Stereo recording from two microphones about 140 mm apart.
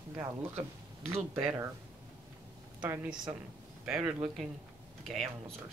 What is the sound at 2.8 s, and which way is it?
A woman's voice, 10° right (ahead or behind).